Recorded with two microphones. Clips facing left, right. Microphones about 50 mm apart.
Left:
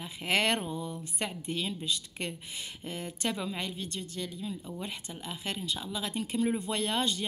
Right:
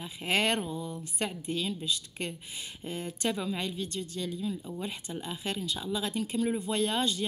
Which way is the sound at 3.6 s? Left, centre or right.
Left.